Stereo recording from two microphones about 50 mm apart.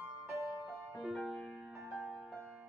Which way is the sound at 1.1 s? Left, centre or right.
Centre.